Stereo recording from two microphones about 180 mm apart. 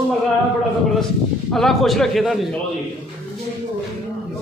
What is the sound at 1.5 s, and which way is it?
Speech, centre (ahead or behind).